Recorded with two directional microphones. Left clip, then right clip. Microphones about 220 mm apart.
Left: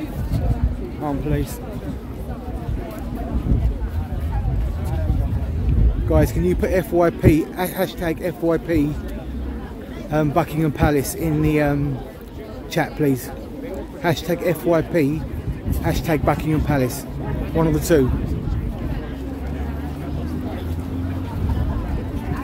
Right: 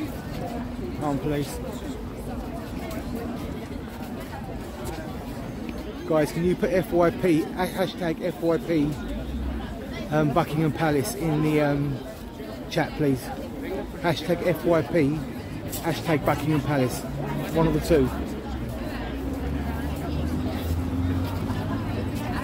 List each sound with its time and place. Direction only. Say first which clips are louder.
6.0 s a man's voice: left 3 dB; 20° left (ahead or behind)
10.1 s a man's voice: left 3 dB; 20° left (ahead or behind)
12.7 s a man's voice: left 4 dB; 25° left (ahead or behind)